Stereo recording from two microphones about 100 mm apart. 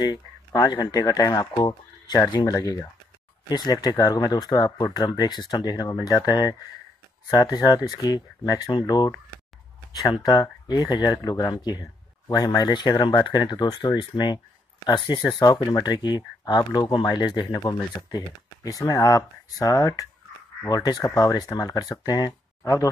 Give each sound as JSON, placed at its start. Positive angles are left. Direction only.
{"t": 0.0, "sound": "speech", "side_deg": 40}
{"t": 10.2, "sound": "speech", "side_deg": 40}